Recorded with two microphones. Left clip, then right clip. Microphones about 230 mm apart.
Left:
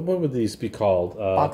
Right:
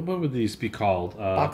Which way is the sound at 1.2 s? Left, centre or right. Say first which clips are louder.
Left 2 dB; right.